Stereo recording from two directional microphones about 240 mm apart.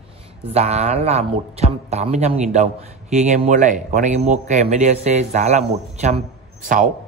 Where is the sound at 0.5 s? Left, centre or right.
Right.